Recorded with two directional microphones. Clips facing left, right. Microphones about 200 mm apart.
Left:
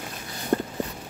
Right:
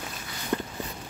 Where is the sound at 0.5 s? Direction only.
40° left (ahead or behind).